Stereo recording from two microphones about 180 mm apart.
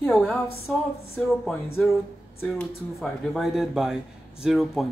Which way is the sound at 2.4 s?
5° left (ahead or behind).